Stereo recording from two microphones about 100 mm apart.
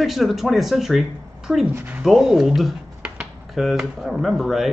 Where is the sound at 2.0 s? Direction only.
5° right (ahead or behind).